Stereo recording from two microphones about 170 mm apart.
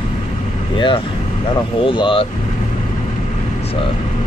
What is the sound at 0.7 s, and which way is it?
Speech, 30° left (ahead or behind).